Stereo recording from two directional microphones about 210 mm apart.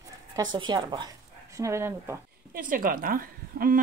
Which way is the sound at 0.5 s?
20° right (ahead or behind).